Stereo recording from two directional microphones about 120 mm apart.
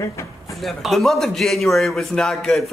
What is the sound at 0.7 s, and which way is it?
A man's voice, centre (ahead or behind).